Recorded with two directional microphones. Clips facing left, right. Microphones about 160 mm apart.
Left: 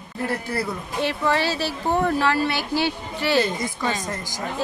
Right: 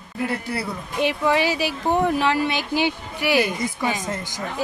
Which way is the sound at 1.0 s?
15° right (ahead or behind).